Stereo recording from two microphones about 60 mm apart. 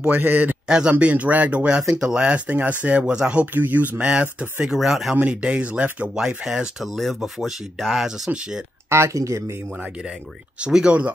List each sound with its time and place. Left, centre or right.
0.0 s a man's voice: right
0.7 s speech: centre
1.8 s speech: centre
3.5 s speech: right
4.7 s speech: centre
5.1 s speech: right
6.2 s speech: centre
8.8 s speech: right
10.6 s speech: centre